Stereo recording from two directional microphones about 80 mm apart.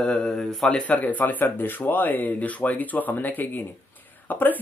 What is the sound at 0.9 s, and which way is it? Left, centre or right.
Speech, left.